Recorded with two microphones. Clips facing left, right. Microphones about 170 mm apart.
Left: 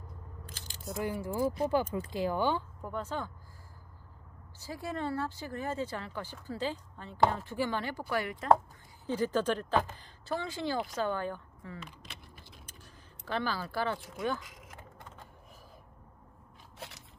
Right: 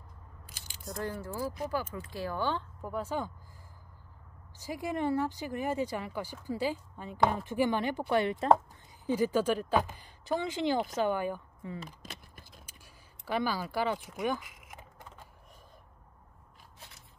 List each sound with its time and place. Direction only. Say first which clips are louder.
0.9 s speech: left 3 dB; 10° left (ahead or behind)
1.5 s speech: left 5 dB; 25° left (ahead or behind)
2.8 s speech: right 2 dB; 10° right (ahead or behind)
4.6 s a woman's voice: right 3 dB; 15° right (ahead or behind)
9.0 s speech: right 2 dB; 10° right (ahead or behind)
11.8 s a sound: right 3 dB; 45° right (ahead or behind)
13.2 s speech: right 2 dB; 10° right (ahead or behind)
16.7 s crushing: left 10 dB; 75° left (ahead or behind)